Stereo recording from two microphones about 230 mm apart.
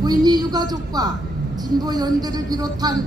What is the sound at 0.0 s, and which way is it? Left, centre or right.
A woman's voice, centre.